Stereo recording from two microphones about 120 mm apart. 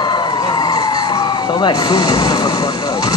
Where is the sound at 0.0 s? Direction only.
35° left (ahead or behind).